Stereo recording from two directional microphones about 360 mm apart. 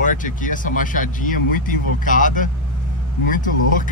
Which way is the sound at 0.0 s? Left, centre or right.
Left.